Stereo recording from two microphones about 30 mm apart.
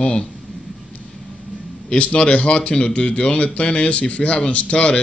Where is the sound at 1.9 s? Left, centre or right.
Left.